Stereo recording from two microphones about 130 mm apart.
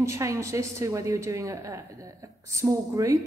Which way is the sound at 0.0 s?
25° right (ahead or behind).